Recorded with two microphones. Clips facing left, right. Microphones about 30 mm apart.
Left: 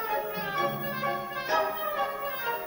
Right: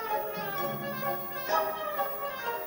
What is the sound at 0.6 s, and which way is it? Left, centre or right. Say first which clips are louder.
Brass instrument: left 4 dB; left.